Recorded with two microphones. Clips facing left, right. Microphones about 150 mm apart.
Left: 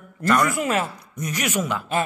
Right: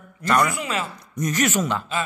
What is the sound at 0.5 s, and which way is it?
Speech, 50° left (ahead or behind).